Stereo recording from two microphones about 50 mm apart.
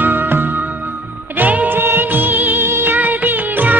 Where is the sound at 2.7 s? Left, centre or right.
Right.